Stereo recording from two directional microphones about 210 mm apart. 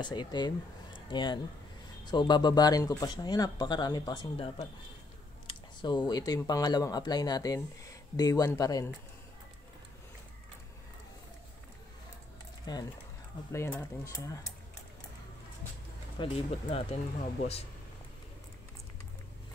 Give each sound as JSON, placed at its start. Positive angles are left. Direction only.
{"t": 0.0, "sound": "speech", "side_deg": 20}
{"t": 12.7, "sound": "speech", "side_deg": 20}
{"t": 16.2, "sound": "speech", "side_deg": 20}